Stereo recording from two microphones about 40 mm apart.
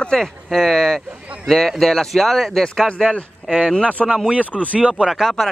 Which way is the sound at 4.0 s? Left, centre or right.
Centre.